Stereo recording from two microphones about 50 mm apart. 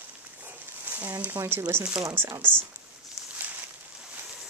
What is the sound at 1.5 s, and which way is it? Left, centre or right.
Speech, right.